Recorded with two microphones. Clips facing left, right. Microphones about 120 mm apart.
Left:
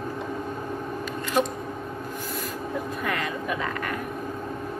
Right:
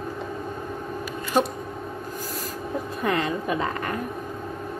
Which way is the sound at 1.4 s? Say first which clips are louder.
Right 2 dB; 35° right (ahead or behind).